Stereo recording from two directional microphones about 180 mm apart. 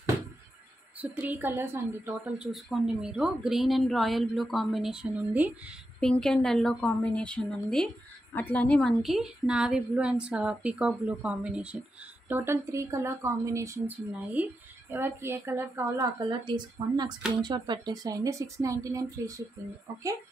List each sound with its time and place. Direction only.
1.1 s a woman's voice: 10° right (ahead or behind)
5.9 s a woman's voice: 5° left (ahead or behind); by 16.1 s 15° right (ahead or behind)
16.2 s speech: 25° right (ahead or behind)